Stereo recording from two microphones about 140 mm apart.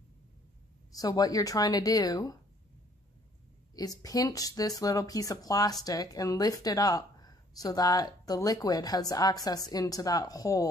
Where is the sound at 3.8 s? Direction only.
25° left (ahead or behind).